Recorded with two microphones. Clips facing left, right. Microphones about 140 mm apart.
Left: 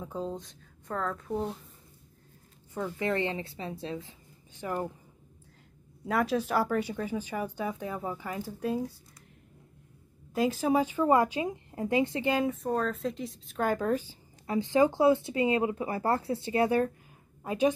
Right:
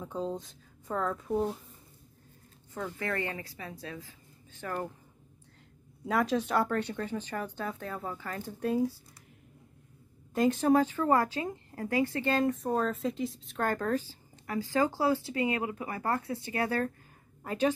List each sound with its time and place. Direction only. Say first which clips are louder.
0.0 s a woman's voice: right 1 dB; centre (ahead or behind)
2.7 s a woman's voice: left 4 dB; 15° left (ahead or behind)
6.0 s speech: even; centre (ahead or behind)
10.3 s a woman's voice: right 2 dB; centre (ahead or behind)
10.8 s speech: left 2 dB; 15° left (ahead or behind)
12.4 s a woman's voice: even; centre (ahead or behind)